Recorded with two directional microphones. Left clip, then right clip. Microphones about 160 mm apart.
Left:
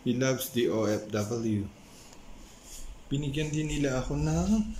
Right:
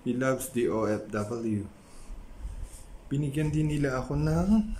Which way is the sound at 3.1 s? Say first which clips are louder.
Right 1 dB; 5° right (ahead or behind).